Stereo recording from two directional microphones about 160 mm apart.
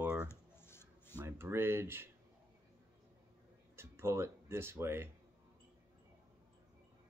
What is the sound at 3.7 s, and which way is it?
Speech, 15° right (ahead or behind).